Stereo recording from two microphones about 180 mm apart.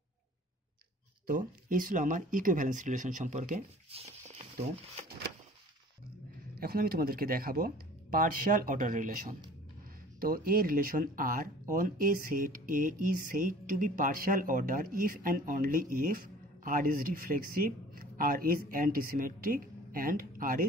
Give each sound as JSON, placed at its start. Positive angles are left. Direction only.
{"t": 1.2, "sound": "speech", "side_deg": -50}
{"t": 6.6, "sound": "speech", "side_deg": -55}
{"t": 10.2, "sound": "speech", "side_deg": -55}